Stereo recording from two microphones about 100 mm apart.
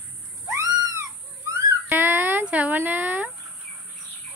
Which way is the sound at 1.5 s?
30° right (ahead or behind).